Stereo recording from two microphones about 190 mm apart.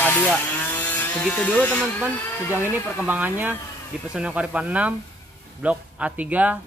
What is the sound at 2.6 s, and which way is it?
Speech, 10° right (ahead or behind).